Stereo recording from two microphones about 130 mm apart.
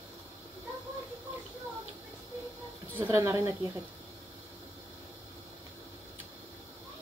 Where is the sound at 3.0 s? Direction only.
20° right (ahead or behind).